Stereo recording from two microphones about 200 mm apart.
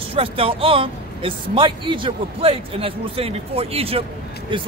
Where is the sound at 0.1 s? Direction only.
25° right (ahead or behind).